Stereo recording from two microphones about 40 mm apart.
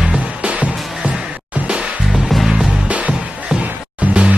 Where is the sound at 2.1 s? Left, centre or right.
Centre.